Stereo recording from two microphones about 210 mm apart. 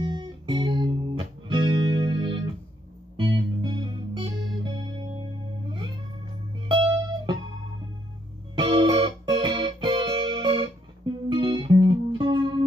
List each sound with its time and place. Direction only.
0.0 s music: 20° right (ahead or behind)
6.7 s music: 20° right (ahead or behind)
8.5 s music: 20° right (ahead or behind)